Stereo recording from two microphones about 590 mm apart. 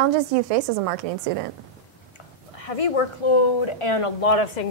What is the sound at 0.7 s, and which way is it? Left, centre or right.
Speech, right.